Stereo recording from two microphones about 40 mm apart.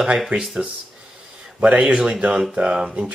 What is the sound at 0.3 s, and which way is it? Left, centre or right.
Speech, right.